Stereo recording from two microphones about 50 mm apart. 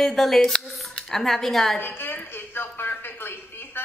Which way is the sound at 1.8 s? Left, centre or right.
Left.